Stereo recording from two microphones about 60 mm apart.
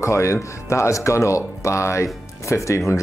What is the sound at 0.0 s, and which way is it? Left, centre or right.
Speech, left.